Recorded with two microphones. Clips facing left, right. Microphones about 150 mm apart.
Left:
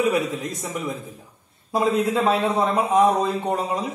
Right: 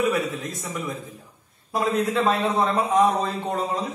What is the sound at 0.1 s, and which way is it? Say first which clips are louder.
A man's voice: left 2 dB; 20° left (ahead or behind).